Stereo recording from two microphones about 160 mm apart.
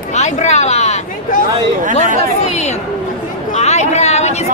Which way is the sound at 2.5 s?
45° left (ahead or behind).